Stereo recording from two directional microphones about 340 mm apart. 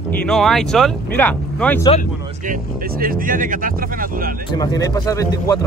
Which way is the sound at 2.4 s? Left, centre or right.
Right.